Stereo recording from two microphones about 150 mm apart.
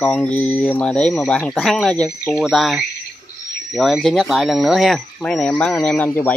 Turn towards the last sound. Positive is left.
turn(degrees=10)  # may be behind; listen again after turning